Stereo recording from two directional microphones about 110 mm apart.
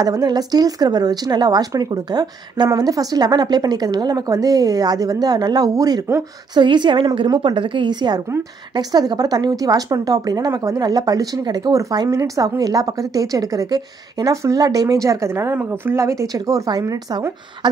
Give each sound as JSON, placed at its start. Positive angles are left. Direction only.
{"t": 0.0, "sound": "a woman's voice", "side_deg": -35}
{"t": 6.5, "sound": "a woman's voice", "side_deg": -45}